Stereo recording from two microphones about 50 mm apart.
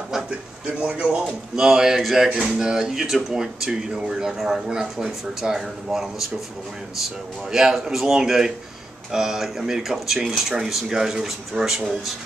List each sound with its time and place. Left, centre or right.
0.7 s speech: right
1.6 s speech: centre
7.5 s speech: centre